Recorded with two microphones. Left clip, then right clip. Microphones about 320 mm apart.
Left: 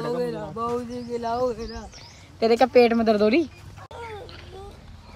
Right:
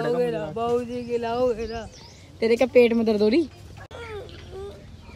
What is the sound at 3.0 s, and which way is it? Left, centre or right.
Speech, centre.